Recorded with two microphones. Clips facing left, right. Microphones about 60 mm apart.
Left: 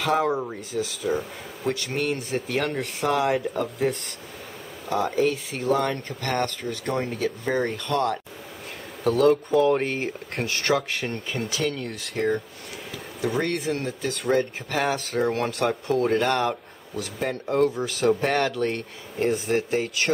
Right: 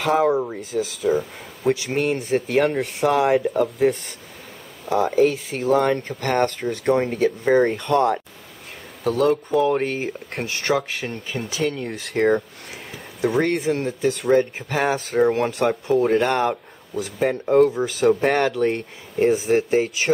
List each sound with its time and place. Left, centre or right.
0.0 s speech: centre
2.4 s speech: centre
2.8 s speech: centre; by 8.1 s right
9.0 s speech: centre
11.5 s speech: centre
12.2 s speech: right
13.6 s speech: centre
14.0 s speech: centre
17.6 s speech: centre